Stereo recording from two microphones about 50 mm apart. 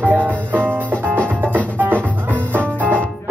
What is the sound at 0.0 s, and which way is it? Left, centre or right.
Music, right.